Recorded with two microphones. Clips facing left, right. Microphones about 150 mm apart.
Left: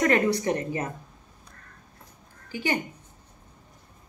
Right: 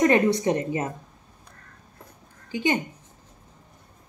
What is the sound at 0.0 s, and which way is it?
Speech, 20° right (ahead or behind).